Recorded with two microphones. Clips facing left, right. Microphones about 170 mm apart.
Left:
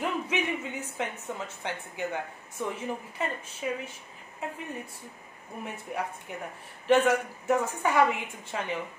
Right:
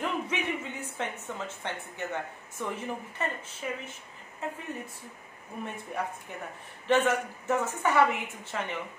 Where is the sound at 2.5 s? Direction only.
10° left (ahead or behind).